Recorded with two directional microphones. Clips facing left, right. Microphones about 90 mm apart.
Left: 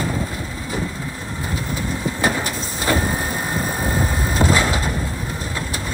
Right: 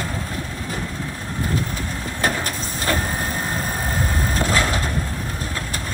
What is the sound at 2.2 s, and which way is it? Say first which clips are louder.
Vehicle: even; 10° left (ahead or behind).